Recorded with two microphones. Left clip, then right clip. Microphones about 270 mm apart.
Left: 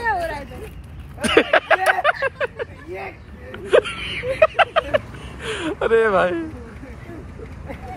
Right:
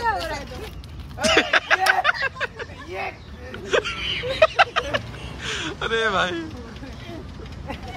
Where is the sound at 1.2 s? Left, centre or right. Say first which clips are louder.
Left 2 dB; centre.